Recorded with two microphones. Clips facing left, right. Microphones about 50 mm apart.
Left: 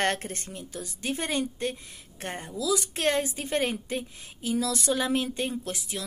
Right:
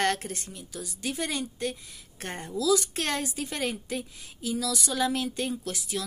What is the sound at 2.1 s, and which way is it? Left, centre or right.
A woman's voice, left.